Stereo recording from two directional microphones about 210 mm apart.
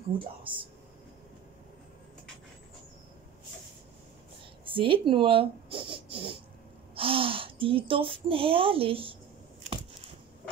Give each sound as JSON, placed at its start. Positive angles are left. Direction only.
{"t": 0.4, "sound": "speech", "side_deg": -25}
{"t": 4.6, "sound": "speech", "side_deg": -25}